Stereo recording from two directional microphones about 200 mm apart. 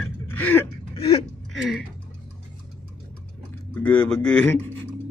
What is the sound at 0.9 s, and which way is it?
Speech, 30° left (ahead or behind).